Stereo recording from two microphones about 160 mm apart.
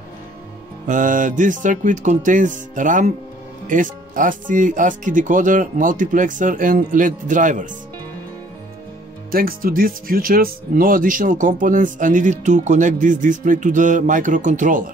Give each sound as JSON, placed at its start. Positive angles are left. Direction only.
{"t": 0.8, "sound": "speech", "side_deg": -55}
{"t": 9.3, "sound": "speech", "side_deg": -65}